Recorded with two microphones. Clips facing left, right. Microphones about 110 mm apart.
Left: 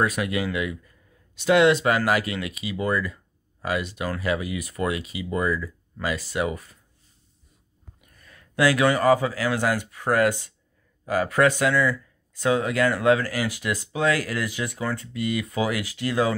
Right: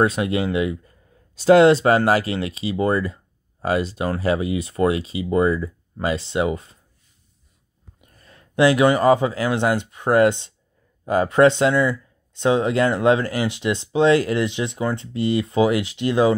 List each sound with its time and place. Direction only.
0.0 s speech: 25° right (ahead or behind)
8.0 s speech: 30° right (ahead or behind)